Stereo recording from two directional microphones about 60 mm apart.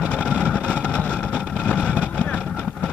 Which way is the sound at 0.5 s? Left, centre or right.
Left.